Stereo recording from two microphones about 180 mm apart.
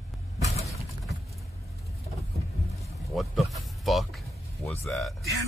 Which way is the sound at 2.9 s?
Centre (ahead or behind).